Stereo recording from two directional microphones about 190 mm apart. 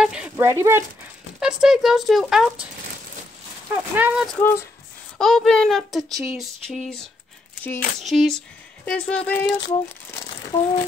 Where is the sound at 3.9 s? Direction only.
5° right (ahead or behind).